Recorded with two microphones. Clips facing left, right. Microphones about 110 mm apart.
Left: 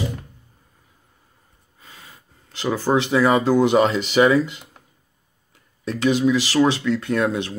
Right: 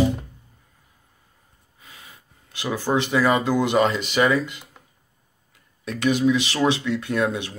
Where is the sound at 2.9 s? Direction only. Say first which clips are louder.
Left 3 dB; 25° left (ahead or behind).